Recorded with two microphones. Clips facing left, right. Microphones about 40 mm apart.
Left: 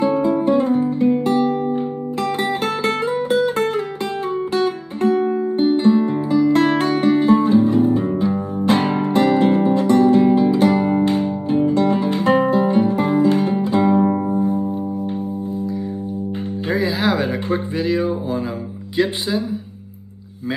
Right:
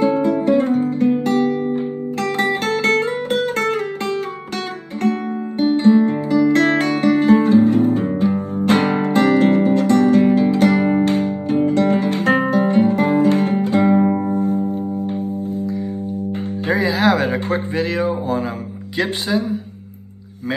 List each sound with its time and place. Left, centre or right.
0.0 s music: right
1.2 s guitar: right
2.3 s music: right
4.6 s music: right
13.9 s music: centre
14.2 s music: right
17.1 s a sound: right